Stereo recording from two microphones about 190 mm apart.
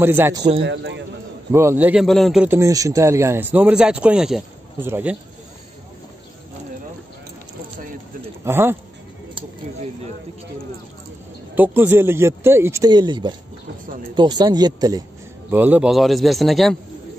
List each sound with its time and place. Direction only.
0.0 s a man's voice: 10° right (ahead or behind)
0.7 s a man's voice: 70° right (ahead or behind)
1.5 s a man's voice: 15° right (ahead or behind)
2.4 s a man's voice: 15° right (ahead or behind)
8.5 s a man's voice: 10° right (ahead or behind)
11.5 s a man's voice: 10° right (ahead or behind)
15.5 s a man's voice: 10° right (ahead or behind)